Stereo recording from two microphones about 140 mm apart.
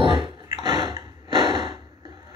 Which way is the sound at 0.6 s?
35° right (ahead or behind).